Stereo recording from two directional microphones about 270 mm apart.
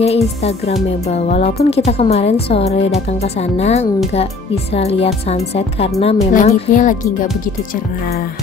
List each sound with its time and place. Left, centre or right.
0.0 s speech: left